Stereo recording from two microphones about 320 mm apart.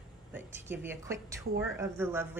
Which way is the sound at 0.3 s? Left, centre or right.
Centre.